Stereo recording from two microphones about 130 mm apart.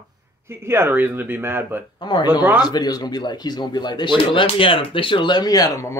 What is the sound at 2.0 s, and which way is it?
Speech, 35° left (ahead or behind).